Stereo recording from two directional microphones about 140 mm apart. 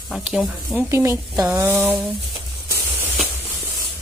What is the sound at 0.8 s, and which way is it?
Speech, 20° right (ahead or behind).